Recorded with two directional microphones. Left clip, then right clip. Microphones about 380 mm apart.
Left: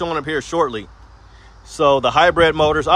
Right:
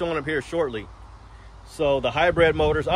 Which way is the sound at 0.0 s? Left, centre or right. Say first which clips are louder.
Left 4 dB; centre.